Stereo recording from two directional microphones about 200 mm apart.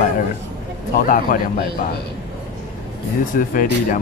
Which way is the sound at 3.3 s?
45° left (ahead or behind).